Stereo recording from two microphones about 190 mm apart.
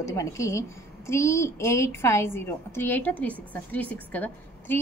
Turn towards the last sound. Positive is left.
turn(degrees=10)  # may be behind; listen again after turning